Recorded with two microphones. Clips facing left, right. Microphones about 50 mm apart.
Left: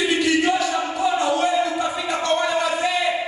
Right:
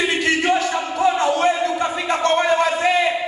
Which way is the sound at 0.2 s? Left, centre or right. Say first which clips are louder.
Right 1 dB; right.